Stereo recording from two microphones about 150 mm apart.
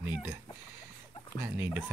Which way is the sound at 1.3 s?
15° right (ahead or behind).